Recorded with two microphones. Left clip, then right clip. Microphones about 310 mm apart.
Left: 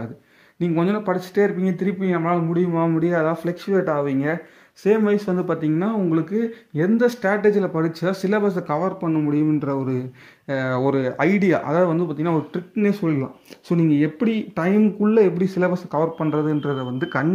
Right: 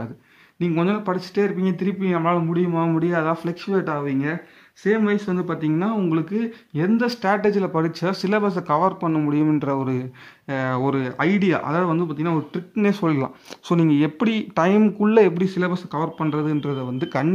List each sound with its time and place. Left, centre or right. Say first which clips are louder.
0.6 s speech: left 1 dB; centre
13.7 s speech: even; right
14.0 s speech: even; centre
16.7 s speech: left 1 dB; centre